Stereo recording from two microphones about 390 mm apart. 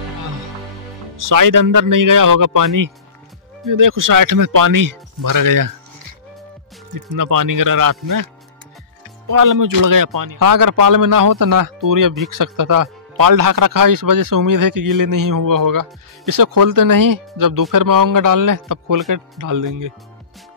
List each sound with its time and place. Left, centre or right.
1.1 s speech: right
6.9 s speech: right
9.3 s speech: right